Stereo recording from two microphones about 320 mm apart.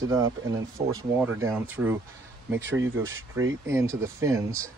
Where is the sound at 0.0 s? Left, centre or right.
Centre.